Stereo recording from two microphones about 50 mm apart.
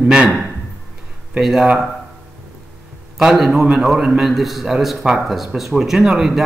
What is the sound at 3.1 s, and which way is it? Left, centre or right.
Speech, centre.